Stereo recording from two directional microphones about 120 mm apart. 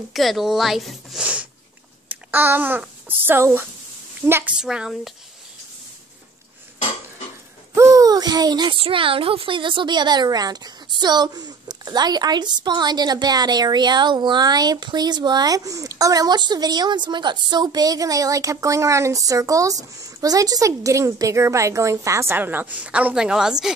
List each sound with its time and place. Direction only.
0.1 s a child's voice: centre (ahead or behind); by 4.6 s 20° right (ahead or behind)
4.6 s speech: 5° right (ahead or behind)
7.7 s a child's voice: 25° right (ahead or behind); by 23.7 s 5° right (ahead or behind)